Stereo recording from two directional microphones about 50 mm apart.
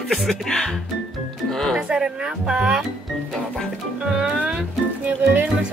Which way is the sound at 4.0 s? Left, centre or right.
Centre.